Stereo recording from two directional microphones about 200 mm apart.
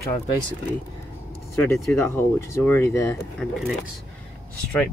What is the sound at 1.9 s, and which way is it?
Speech, 15° left (ahead or behind).